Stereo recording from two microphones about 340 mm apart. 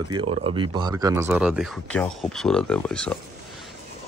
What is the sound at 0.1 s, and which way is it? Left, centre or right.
Speech, centre.